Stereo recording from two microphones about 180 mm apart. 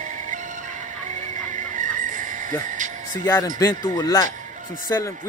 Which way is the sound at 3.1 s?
20° left (ahead or behind).